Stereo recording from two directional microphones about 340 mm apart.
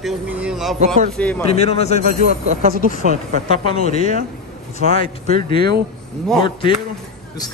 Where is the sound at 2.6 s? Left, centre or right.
Right.